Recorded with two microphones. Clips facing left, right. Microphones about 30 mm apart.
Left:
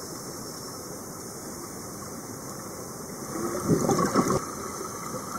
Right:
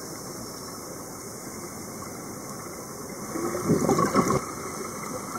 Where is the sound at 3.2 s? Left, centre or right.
Centre.